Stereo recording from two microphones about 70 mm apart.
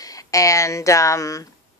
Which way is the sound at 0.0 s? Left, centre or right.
Left.